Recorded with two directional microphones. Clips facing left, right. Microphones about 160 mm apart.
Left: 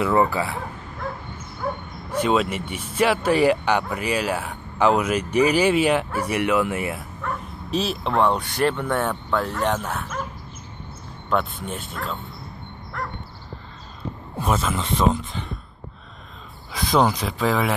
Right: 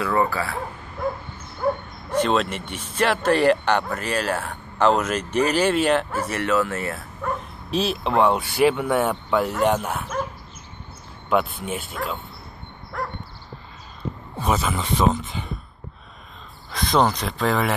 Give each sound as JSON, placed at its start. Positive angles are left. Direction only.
{"t": 0.0, "sound": "speech", "side_deg": 20}
{"t": 2.1, "sound": "speech", "side_deg": 10}
{"t": 7.7, "sound": "speech", "side_deg": 0}
{"t": 11.2, "sound": "speech", "side_deg": -5}
{"t": 14.3, "sound": "speech", "side_deg": 0}
{"t": 16.7, "sound": "speech", "side_deg": 5}